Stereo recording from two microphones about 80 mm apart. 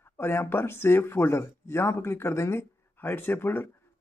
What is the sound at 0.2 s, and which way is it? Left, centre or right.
Speech, left.